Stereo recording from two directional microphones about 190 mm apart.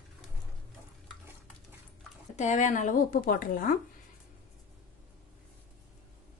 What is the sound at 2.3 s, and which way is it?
Speech, 40° left (ahead or behind).